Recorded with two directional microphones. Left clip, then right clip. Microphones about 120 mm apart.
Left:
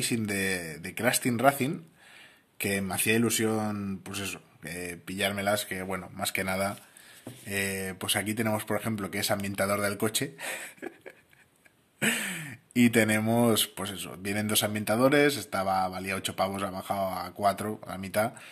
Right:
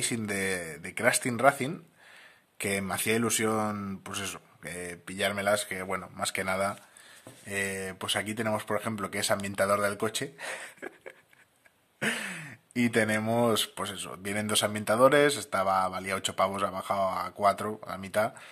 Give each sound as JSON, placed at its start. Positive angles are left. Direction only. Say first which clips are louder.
{"t": 0.0, "sound": "speech", "louder": "left 1 dB", "side_deg": -50}
{"t": 2.6, "sound": "speech", "louder": "left 1 dB", "side_deg": -55}
{"t": 4.7, "sound": "speech", "louder": "left 1 dB", "side_deg": -45}
{"t": 9.9, "sound": "speech", "louder": "left 1 dB", "side_deg": -30}